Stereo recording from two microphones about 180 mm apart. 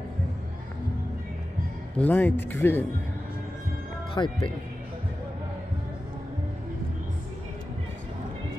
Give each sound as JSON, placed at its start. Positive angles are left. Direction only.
{"t": 2.0, "sound": "speech", "side_deg": 10}
{"t": 4.1, "sound": "speech", "side_deg": 30}